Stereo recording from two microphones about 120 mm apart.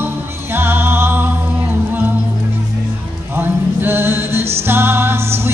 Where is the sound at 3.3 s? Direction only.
20° right (ahead or behind).